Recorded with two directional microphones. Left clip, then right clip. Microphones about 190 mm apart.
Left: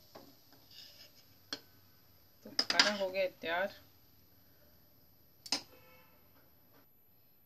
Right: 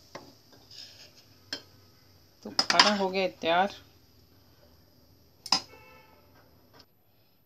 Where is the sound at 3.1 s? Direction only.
25° right (ahead or behind).